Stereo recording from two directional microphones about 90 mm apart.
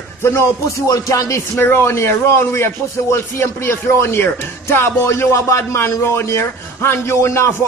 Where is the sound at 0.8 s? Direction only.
40° left (ahead or behind).